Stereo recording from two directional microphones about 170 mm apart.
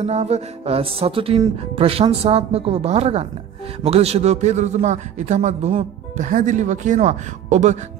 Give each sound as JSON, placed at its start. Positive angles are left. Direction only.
{"t": 0.0, "sound": "a man's voice", "side_deg": -40}